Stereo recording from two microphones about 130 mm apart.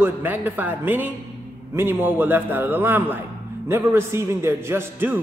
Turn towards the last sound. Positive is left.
turn(degrees=-15)  # may be behind; listen again after turning